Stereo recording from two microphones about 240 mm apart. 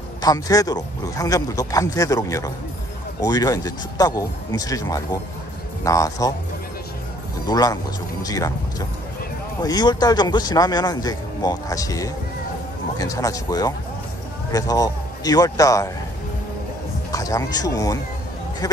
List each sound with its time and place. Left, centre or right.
0.2 s speech: centre
7.4 s a man's voice: centre
17.1 s speech: centre